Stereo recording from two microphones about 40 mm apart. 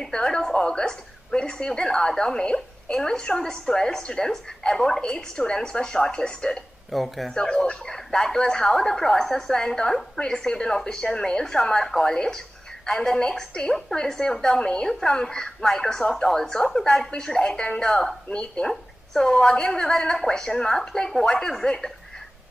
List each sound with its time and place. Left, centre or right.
0.0 s a woman's voice: centre
6.9 s speech: centre
7.3 s a woman's voice: left
8.4 s a woman's voice: left
8.6 s a woman's voice: centre